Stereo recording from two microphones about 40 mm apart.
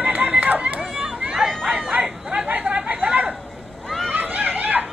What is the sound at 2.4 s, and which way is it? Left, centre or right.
Chatter, right.